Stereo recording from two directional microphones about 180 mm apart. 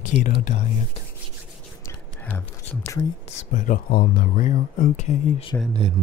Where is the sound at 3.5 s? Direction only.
50° left (ahead or behind).